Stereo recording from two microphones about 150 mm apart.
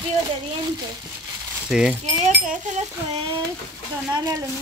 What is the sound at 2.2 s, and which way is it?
Speech, 55° right (ahead or behind).